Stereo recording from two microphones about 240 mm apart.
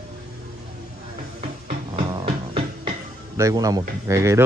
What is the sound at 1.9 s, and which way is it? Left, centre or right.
Music, right.